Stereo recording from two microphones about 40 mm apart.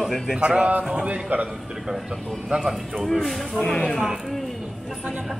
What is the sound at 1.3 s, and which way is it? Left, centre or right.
Speech, right.